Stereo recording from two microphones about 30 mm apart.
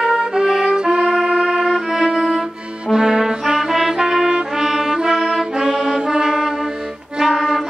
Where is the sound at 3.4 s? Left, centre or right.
Centre.